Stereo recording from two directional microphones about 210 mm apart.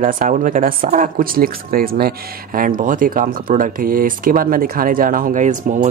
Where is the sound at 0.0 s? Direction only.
40° right (ahead or behind).